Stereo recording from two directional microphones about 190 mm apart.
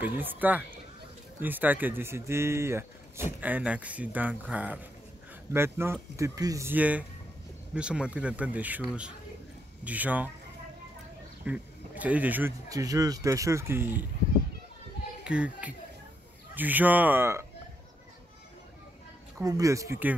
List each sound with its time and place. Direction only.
0.0 s speech: 10° right (ahead or behind)
11.4 s speech: 10° right (ahead or behind)
15.2 s speech: 5° right (ahead or behind)
19.4 s speech: 20° right (ahead or behind)